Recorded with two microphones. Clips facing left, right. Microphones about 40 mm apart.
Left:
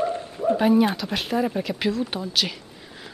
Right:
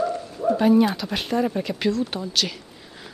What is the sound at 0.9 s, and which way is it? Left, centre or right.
Speech, centre.